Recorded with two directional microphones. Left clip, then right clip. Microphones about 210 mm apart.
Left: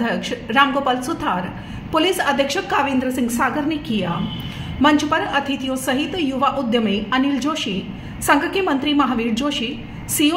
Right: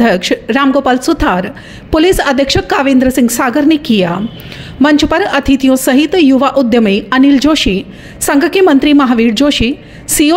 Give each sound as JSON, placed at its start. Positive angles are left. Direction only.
{"t": 0.0, "sound": "a woman's voice", "side_deg": -55}